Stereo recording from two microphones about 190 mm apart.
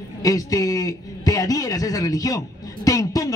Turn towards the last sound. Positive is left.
turn(degrees=20)  # may be behind; listen again after turning